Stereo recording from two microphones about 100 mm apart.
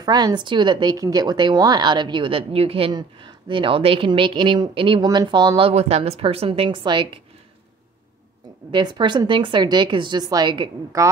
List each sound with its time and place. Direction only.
0.0 s speech: 45° right (ahead or behind); by 2.9 s 75° right (ahead or behind)
2.9 s speech: 45° right (ahead or behind)
5.0 s speech: 45° right (ahead or behind)
5.6 s a woman's voice: 80° right; by 7.2 s 50° right (ahead or behind)
8.7 s speech: 50° right (ahead or behind)
11.0 s speech: 35° right (ahead or behind)